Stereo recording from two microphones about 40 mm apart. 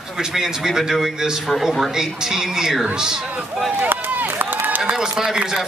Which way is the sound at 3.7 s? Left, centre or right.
Right.